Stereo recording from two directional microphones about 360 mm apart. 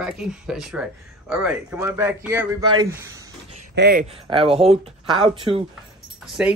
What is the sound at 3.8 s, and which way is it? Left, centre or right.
Speech, right.